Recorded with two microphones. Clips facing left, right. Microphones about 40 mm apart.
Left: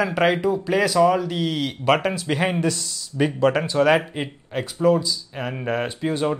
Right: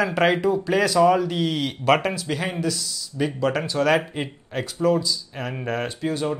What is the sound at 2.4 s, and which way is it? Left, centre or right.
Speech, left.